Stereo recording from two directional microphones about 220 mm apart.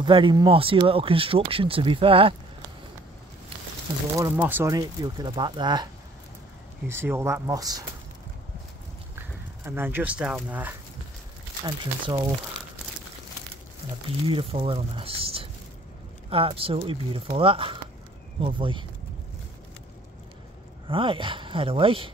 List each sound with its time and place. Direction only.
0.0 s speech: 20° right (ahead or behind)
4.2 s speech: 10° right (ahead or behind)
6.9 s speech: 10° right (ahead or behind)
9.7 s speech: 10° right (ahead or behind)
11.6 s speech: 20° right (ahead or behind)
14.3 s speech: 25° right (ahead or behind)
20.9 s speech: 25° right (ahead or behind)